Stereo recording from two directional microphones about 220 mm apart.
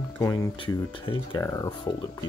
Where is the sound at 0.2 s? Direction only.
15° left (ahead or behind).